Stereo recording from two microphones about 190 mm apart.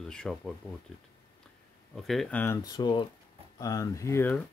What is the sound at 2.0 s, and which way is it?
Speech, 5° left (ahead or behind).